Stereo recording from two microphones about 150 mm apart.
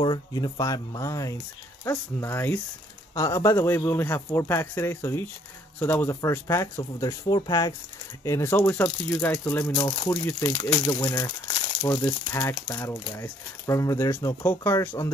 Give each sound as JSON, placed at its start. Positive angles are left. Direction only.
{"t": 0.0, "sound": "a man's voice", "side_deg": 30}